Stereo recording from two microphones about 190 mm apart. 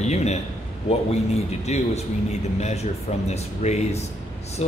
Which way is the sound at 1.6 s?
35° left (ahead or behind).